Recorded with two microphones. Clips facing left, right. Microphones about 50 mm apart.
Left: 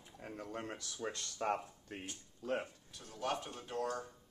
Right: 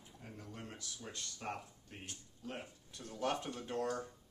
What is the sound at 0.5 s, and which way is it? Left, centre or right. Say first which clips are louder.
Speech: left 5 dB; left.